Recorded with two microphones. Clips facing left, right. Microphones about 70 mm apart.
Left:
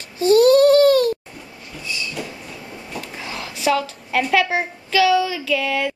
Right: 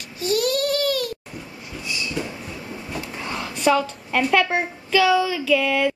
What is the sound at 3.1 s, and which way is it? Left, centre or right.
Speech, centre.